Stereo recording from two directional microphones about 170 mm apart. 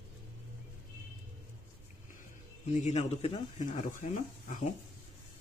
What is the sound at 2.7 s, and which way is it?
Speech, 45° left (ahead or behind).